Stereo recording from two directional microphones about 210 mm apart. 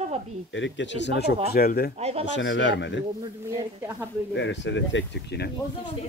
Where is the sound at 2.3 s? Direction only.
60° left (ahead or behind).